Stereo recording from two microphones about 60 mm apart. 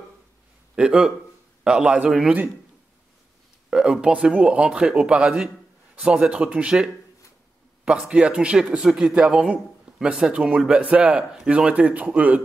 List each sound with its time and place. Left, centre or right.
0.7 s a man's voice: centre
3.7 s speech: centre